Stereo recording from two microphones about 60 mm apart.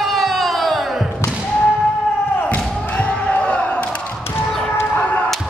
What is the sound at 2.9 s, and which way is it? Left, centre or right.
Crowd, centre.